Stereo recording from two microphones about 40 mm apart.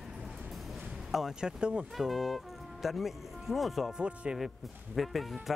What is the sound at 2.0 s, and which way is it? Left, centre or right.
Speech, centre.